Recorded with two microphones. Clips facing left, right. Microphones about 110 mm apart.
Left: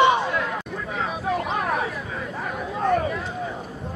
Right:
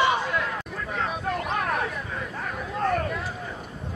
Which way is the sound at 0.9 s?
Centre (ahead or behind).